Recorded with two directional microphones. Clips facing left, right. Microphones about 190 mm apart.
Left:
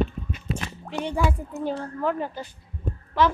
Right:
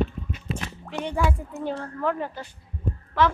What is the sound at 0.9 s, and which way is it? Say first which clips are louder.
Speech: left 1 dB; 35° left (ahead or behind).